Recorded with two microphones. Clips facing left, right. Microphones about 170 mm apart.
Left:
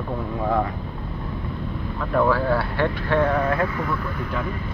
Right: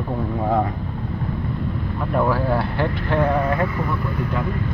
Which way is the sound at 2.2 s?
15° right (ahead or behind).